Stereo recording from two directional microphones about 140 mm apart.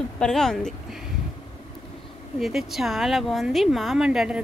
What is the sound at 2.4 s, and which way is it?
Speech, centre (ahead or behind).